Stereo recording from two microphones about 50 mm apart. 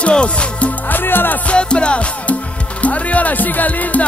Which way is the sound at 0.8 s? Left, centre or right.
Left.